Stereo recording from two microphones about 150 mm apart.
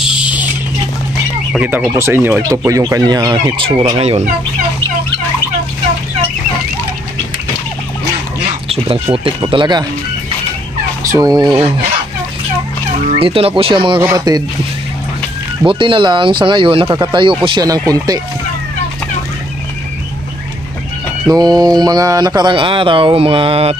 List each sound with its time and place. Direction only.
0.0 s a sound: 5° right (ahead or behind)
1.6 s speech: 15° right (ahead or behind); by 3.7 s 30° right (ahead or behind)
4.0 s speech: 45° right (ahead or behind)
8.6 s speech: 40° right (ahead or behind)
11.1 s speech: 25° right (ahead or behind)
13.2 s speech: 40° right (ahead or behind)
14.0 s speech: 25° right (ahead or behind)
15.6 s speech: 35° right (ahead or behind)
21.3 s speech: 25° right (ahead or behind)